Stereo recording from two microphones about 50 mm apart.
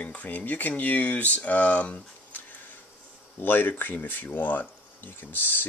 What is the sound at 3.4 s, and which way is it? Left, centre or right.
Speech, left.